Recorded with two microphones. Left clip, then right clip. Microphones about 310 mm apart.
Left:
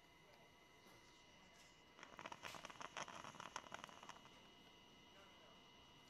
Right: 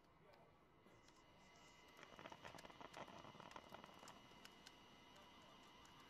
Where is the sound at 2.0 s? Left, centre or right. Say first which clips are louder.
Left 5 dB; left.